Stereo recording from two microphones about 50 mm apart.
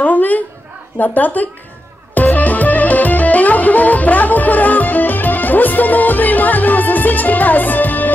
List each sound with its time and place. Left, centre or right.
0.0 s dog: left
0.9 s speech: left
2.1 s music: left